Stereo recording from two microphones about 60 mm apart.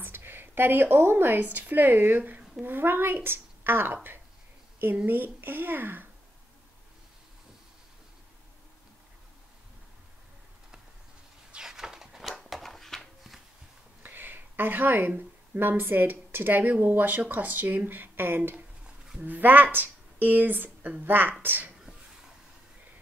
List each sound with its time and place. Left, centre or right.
0.0 s a woman's voice: right
11.5 s a sound: centre
14.0 s a woman's voice: right